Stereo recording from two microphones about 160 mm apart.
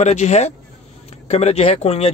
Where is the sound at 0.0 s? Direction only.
45° left (ahead or behind).